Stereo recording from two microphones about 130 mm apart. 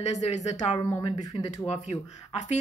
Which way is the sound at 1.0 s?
30° left (ahead or behind).